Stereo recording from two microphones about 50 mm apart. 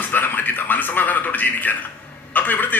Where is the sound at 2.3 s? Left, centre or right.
Left.